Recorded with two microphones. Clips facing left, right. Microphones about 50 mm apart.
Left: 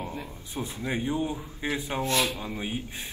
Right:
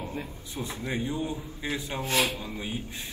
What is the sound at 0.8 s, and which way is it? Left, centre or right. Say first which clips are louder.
A man's voice: left 3 dB; left.